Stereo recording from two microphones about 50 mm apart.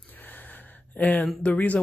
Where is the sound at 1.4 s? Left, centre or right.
Left.